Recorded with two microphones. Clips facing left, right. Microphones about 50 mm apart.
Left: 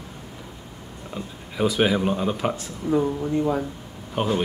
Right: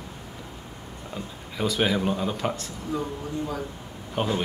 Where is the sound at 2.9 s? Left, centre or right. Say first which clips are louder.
Left 8 dB; left.